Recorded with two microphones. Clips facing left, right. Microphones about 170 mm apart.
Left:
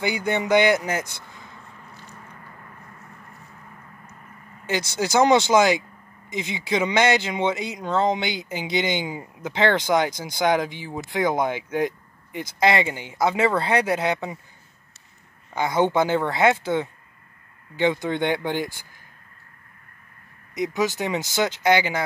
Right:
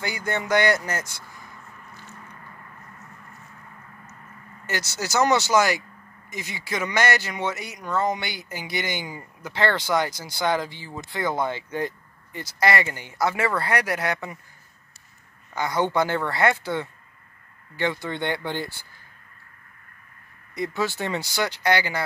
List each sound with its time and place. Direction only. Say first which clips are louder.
0.0 s speech: left 4 dB; 20° left (ahead or behind)
4.6 s speech: left 5 dB; 20° left (ahead or behind)
15.5 s speech: left 3 dB; 20° left (ahead or behind)
20.5 s speech: left 3 dB; 15° left (ahead or behind)